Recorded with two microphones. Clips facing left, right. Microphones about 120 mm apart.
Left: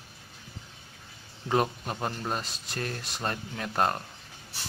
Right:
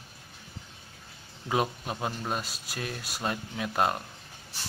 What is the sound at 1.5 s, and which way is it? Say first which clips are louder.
Speech: left 2 dB; 5° right (ahead or behind).